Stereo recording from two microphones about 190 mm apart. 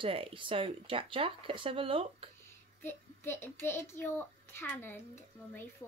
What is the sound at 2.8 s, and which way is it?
A child's voice, 10° left (ahead or behind).